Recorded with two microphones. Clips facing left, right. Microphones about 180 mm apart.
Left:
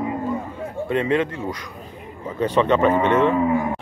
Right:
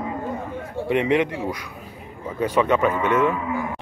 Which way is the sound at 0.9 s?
15° right (ahead or behind).